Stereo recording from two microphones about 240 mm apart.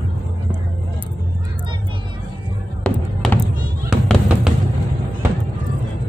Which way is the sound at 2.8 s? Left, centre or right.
Centre.